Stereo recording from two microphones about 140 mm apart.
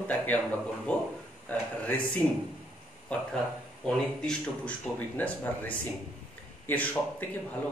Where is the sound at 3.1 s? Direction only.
10° left (ahead or behind).